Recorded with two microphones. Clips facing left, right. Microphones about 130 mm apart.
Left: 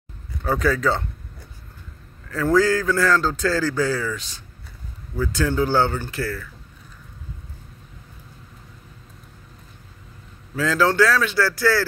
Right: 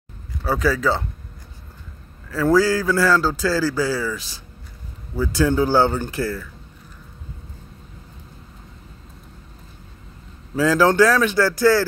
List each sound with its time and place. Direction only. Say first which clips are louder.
0.4 s speech: right 1 dB; 5° right (ahead or behind)
2.2 s a man's voice: right 1 dB; 5° right (ahead or behind)
10.5 s a man's voice: right 4 dB; 15° right (ahead or behind)